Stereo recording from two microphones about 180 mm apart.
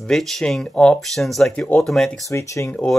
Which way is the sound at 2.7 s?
5° left (ahead or behind).